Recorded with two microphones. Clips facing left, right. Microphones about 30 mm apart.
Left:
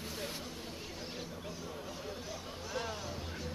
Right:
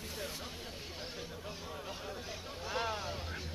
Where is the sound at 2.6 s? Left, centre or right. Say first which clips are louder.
Right 4 dB; right.